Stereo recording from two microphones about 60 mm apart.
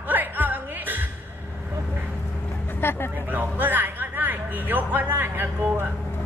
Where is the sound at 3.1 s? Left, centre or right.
Right.